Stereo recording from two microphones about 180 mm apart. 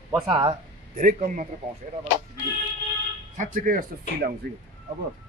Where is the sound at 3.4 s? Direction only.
50° right (ahead or behind).